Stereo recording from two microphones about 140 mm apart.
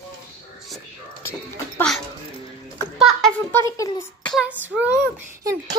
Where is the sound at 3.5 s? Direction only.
20° left (ahead or behind).